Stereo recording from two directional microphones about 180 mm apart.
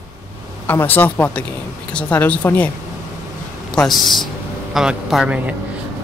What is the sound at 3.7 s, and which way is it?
A woman's voice, centre (ahead or behind).